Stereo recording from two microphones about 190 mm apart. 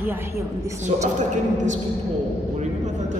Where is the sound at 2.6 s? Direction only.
40° right (ahead or behind).